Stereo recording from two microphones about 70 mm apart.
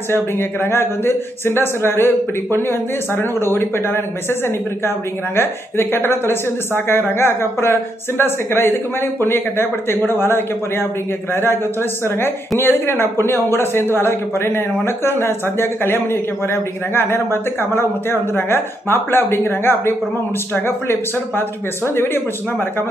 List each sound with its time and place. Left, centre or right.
0.1 s speech: left